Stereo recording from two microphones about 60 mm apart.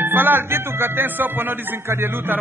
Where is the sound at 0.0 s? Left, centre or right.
Right.